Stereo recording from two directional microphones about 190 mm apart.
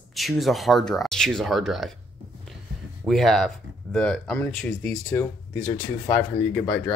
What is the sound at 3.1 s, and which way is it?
Speech, centre (ahead or behind).